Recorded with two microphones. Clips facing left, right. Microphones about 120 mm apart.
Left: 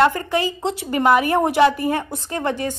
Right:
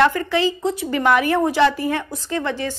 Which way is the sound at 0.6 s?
75° left (ahead or behind).